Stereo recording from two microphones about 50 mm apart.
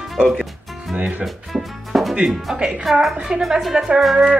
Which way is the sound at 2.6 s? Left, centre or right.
Right.